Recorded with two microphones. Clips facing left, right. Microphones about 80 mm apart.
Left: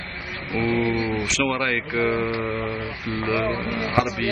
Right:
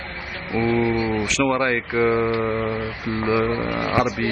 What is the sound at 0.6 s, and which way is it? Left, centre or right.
Mantra, centre.